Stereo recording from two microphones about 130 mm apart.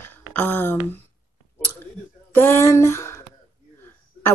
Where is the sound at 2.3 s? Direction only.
20° left (ahead or behind).